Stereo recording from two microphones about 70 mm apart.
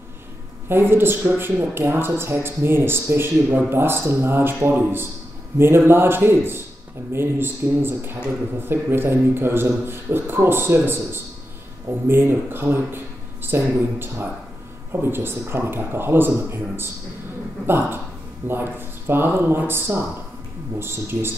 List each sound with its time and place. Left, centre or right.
0.7 s speech: right